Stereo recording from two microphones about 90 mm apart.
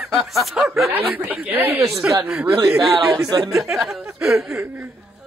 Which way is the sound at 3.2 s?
50° right (ahead or behind).